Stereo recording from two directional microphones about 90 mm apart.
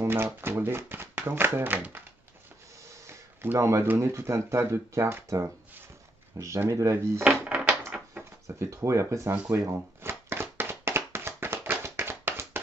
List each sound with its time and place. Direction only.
0.0 s speech: 25° right (ahead or behind)
2.9 s a sound: 30° right (ahead or behind)
3.8 s speech: 20° right (ahead or behind)
4.1 s speech: 30° right (ahead or behind)
7.4 s a sound: 15° right (ahead or behind)
8.5 s speech: 30° right (ahead or behind)
10.0 s tap: 25° right (ahead or behind)